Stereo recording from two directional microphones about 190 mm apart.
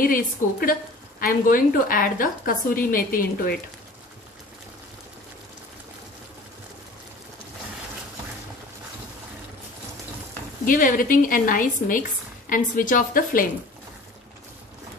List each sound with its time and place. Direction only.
0.0 s a woman's voice: 45° left (ahead or behind)
10.6 s a woman's voice: 45° left (ahead or behind)